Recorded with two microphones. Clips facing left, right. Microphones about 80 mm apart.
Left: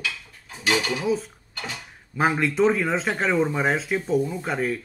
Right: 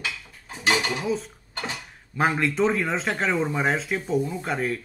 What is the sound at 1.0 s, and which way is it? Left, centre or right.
Speech, centre.